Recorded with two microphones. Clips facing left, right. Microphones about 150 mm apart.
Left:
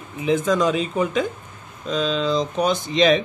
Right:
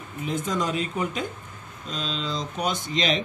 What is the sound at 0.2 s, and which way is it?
Speech, 90° left.